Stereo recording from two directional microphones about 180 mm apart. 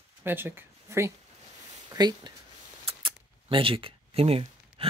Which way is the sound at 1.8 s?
25° right (ahead or behind).